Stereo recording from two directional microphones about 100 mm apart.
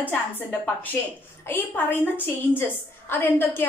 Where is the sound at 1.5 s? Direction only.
20° left (ahead or behind).